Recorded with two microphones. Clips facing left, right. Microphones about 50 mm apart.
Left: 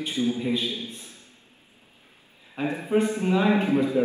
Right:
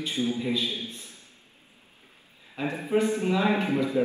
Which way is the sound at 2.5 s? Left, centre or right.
Left.